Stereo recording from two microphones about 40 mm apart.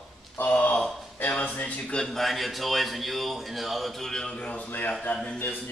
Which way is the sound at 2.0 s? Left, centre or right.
Centre.